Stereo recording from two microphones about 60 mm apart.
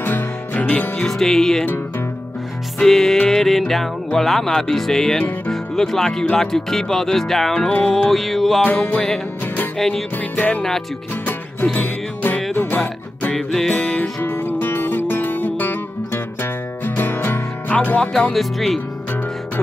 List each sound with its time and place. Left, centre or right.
0.0 s music: left
0.6 s music: left
0.9 s speech: centre
2.8 s speech: centre
3.3 s music: centre
5.5 s speech: centre
8.1 s music: centre
8.7 s music: left
9.8 s music: centre
10.1 s music: left
11.7 s music: left
16.8 s music: left
18.3 s music: centre